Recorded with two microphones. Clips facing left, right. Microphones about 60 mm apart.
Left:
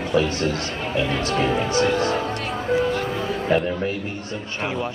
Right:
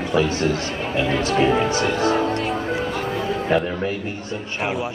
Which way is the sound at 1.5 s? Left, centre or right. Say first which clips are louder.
Even; right.